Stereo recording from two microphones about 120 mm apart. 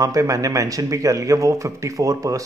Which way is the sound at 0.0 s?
25° right (ahead or behind).